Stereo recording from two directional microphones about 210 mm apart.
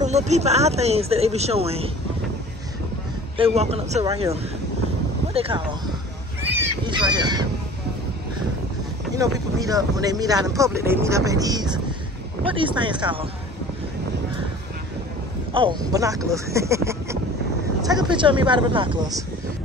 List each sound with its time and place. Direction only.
0.0 s speech: 35° right (ahead or behind)
3.3 s speech: 30° right (ahead or behind)
5.3 s speech: 25° right (ahead or behind)
6.8 s speech: 20° right (ahead or behind)
9.1 s speech: 15° right (ahead or behind)
15.5 s speech: 20° right (ahead or behind)